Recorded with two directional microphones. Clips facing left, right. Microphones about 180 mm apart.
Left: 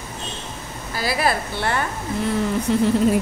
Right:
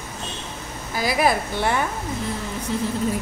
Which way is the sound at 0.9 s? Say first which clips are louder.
Right 1 dB; 15° right (ahead or behind).